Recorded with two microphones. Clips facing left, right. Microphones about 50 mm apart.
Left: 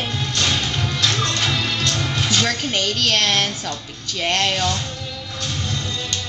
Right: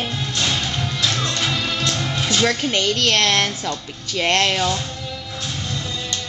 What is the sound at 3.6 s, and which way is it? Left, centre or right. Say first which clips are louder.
Speech: right 2 dB; right.